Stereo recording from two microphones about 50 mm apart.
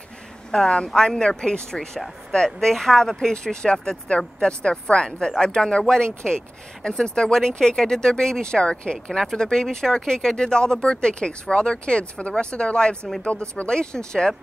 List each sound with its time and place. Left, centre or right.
0.5 s speech: centre